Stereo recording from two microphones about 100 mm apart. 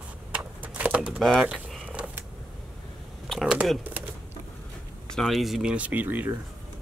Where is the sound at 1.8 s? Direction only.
15° right (ahead or behind).